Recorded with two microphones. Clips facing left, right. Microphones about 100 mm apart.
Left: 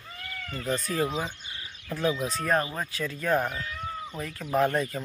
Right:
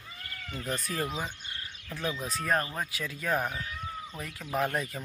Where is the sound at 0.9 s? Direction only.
5° left (ahead or behind).